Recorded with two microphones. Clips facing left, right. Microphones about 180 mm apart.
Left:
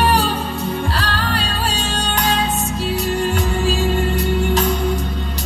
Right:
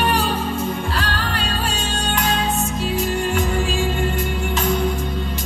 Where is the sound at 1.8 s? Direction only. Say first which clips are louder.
Left 1 dB; 35° left (ahead or behind).